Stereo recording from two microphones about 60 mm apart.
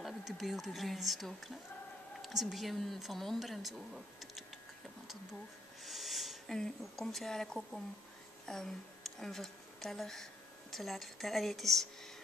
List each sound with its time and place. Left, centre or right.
0.0 s speech: centre
5.9 s speech: centre